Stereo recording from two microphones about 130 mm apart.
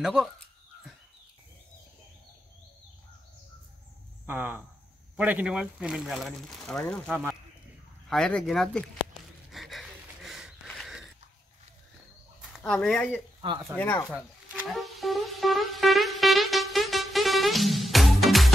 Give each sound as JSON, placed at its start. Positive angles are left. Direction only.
{"t": 0.0, "sound": "speech", "side_deg": -5}
{"t": 4.3, "sound": "speech", "side_deg": -15}
{"t": 7.1, "sound": "speech", "side_deg": -15}
{"t": 8.1, "sound": "speech", "side_deg": 5}
{"t": 9.5, "sound": "a sound", "side_deg": 0}
{"t": 12.6, "sound": "speech", "side_deg": 5}
{"t": 13.7, "sound": "speech", "side_deg": 20}
{"t": 14.1, "sound": "music", "side_deg": -5}